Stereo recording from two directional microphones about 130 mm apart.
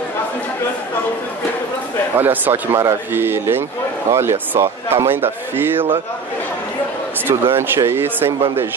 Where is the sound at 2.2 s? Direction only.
15° right (ahead or behind).